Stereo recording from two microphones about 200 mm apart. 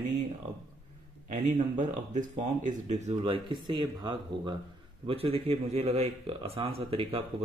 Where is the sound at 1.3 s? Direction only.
40° right (ahead or behind).